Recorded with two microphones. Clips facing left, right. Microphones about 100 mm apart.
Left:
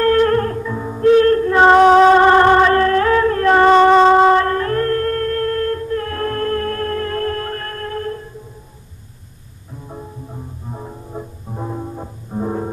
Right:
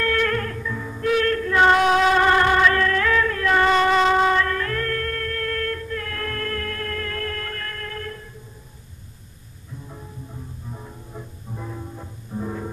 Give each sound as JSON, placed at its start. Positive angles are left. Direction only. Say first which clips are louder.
{"t": 0.0, "sound": "music", "louder": "left 9 dB", "side_deg": 35}
{"t": 9.8, "sound": "music", "louder": "left 9 dB", "side_deg": 35}